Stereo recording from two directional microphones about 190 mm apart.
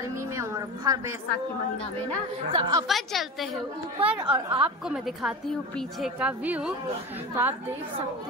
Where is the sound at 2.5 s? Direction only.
20° right (ahead or behind).